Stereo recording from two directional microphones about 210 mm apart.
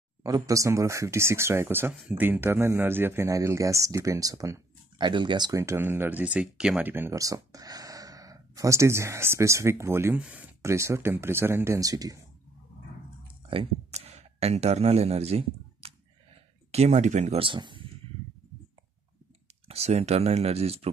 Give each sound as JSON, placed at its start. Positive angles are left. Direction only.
{"t": 0.2, "sound": "speech", "side_deg": -15}
{"t": 13.5, "sound": "speech", "side_deg": -30}
{"t": 19.7, "sound": "speech", "side_deg": -30}